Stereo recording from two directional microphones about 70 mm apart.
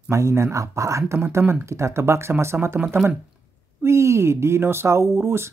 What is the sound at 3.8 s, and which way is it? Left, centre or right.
Speech, right.